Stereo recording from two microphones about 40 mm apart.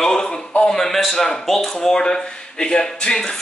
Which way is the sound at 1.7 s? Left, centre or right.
Centre.